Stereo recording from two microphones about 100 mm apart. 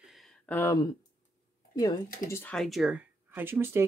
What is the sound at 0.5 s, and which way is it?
Speech, 20° left (ahead or behind).